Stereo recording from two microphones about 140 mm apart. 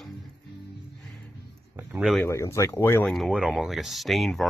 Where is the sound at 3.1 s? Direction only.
Centre (ahead or behind).